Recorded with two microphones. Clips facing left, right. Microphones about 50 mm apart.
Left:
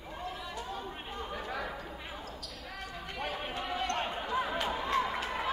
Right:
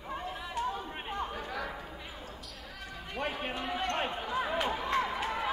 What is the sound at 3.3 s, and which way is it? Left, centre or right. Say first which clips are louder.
Run: right 1 dB; right.